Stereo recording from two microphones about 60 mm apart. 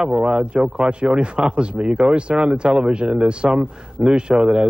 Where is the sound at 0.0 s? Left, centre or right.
Centre.